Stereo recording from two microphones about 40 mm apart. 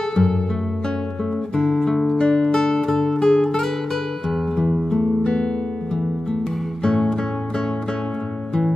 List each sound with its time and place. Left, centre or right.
0.1 s music: centre
1.6 s music: centre
6.8 s music: centre